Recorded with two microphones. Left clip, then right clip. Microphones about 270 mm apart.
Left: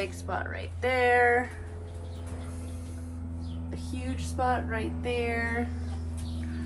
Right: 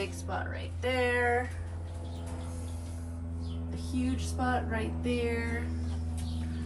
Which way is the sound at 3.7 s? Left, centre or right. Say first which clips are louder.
Right 4 dB; left.